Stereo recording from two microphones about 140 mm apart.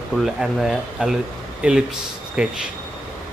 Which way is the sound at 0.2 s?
Centre (ahead or behind).